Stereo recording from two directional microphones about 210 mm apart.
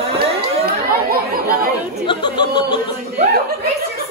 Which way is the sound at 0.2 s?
50° right (ahead or behind).